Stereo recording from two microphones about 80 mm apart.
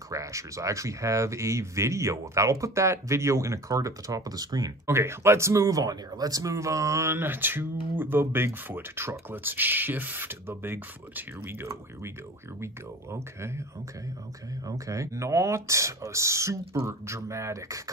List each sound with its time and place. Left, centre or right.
0.1 s speech: right
4.8 s speech: right
7.2 s speech: right
13.1 s speech: right
14.9 s speech: right